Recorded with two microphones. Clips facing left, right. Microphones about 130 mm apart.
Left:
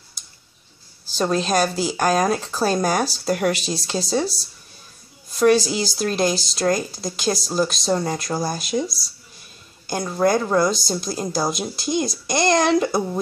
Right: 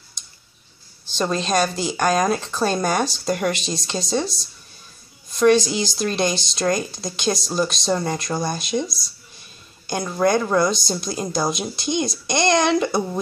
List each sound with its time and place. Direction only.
0.2 s tick-tock: 5° left (ahead or behind)
1.0 s speech: 5° left (ahead or behind)